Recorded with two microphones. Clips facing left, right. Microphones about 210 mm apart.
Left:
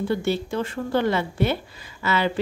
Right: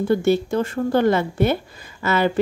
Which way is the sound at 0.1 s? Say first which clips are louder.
Right 8 dB; 45° right (ahead or behind).